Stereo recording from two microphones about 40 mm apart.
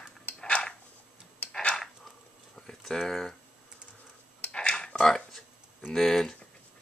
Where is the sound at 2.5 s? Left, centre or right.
Centre.